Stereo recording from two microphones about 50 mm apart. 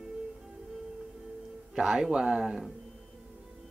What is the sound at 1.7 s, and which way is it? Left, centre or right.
Speech, centre.